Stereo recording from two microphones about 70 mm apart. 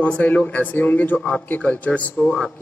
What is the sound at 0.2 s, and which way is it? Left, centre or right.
A man's voice, left.